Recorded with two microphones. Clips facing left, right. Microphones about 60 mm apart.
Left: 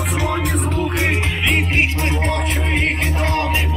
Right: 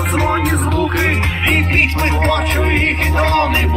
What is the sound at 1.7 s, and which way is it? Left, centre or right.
Music, right.